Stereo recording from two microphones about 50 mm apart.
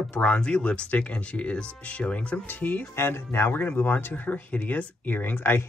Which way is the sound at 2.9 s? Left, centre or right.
Left.